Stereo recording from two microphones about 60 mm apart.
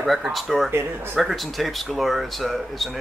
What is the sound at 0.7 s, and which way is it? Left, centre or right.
Speech, right.